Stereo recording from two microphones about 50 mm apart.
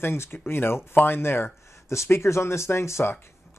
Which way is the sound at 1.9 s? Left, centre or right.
Left.